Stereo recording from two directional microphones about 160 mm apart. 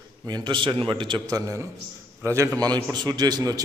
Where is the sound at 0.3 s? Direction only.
30° right (ahead or behind).